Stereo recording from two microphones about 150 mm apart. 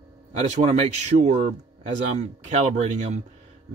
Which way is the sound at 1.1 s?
70° right (ahead or behind).